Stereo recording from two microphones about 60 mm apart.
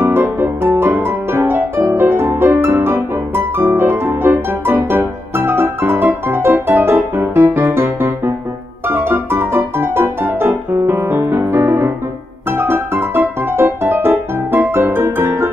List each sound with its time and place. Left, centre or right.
0.0 s music: right